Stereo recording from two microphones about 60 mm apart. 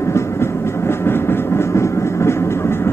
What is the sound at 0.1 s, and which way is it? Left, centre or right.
Train, left.